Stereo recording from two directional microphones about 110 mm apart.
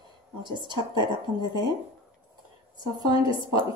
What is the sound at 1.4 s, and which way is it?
Speech, 40° left (ahead or behind).